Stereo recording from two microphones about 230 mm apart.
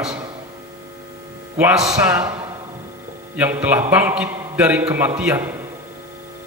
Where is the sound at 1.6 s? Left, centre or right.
Centre.